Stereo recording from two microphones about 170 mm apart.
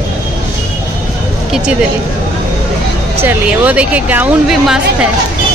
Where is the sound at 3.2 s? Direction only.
10° right (ahead or behind).